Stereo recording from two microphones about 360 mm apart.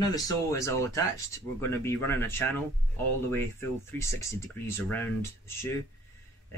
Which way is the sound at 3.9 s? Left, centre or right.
Centre.